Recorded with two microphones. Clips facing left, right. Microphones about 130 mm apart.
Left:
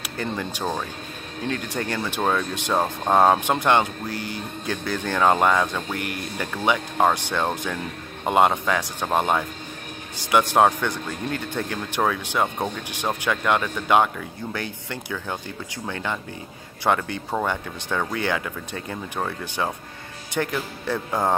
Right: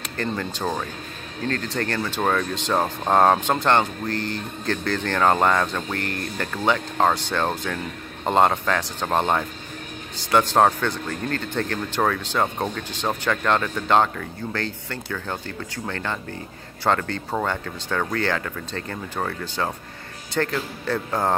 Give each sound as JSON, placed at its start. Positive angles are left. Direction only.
{"t": 0.0, "sound": "speech", "side_deg": 10}